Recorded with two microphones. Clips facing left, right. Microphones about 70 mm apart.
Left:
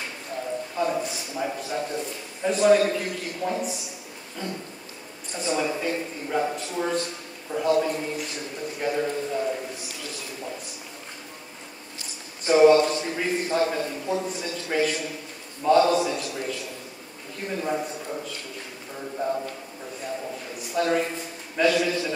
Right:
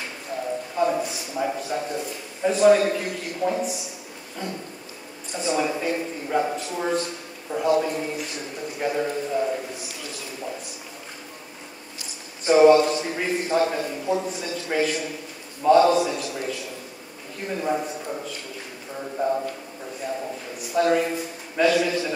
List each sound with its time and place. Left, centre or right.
0.7 s a sound: centre
2.4 s a man's voice: centre
5.3 s a man's voice: centre
12.4 s a man's voice: centre
19.1 s a man's voice: centre
20.7 s a man's voice: centre